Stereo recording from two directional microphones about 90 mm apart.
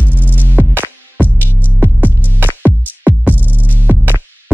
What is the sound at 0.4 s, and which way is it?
Music, 20° right (ahead or behind).